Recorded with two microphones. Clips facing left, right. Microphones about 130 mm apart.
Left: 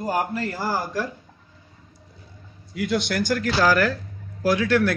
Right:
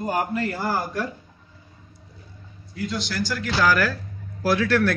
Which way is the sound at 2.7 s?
75° left (ahead or behind).